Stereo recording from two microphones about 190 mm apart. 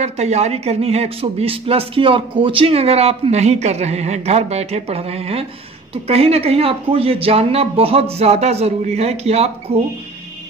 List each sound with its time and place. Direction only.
0.0 s speech: 35° right (ahead or behind)